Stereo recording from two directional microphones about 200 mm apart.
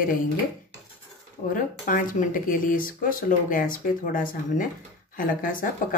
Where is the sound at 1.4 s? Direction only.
45° left (ahead or behind).